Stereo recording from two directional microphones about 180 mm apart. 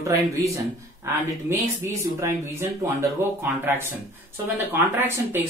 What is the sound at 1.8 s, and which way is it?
Speech, 15° right (ahead or behind).